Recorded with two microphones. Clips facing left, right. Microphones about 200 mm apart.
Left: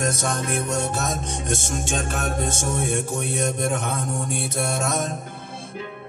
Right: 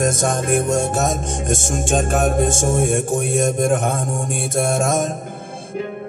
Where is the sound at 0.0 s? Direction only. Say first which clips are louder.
Right 6 dB; 50° right (ahead or behind).